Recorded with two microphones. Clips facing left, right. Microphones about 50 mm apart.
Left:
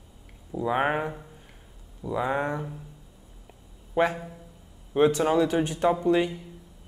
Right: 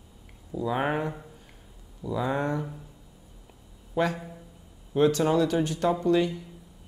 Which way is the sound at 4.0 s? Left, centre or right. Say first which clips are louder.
Left 2 dB; left.